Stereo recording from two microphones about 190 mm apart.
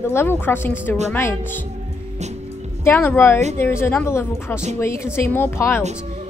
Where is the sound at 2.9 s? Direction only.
15° left (ahead or behind).